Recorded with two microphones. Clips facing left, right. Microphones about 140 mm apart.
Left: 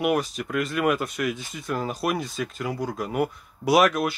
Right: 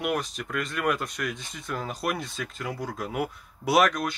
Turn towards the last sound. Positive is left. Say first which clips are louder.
# left 3 dB
turn(degrees=5)  # may be behind; listen again after turning